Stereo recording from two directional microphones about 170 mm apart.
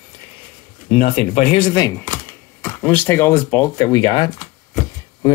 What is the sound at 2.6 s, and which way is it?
Speech, 10° left (ahead or behind).